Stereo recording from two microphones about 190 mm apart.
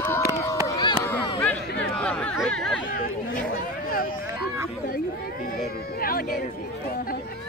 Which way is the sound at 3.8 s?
50° left (ahead or behind).